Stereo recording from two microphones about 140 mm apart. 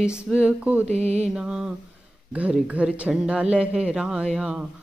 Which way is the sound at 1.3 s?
5° right (ahead or behind).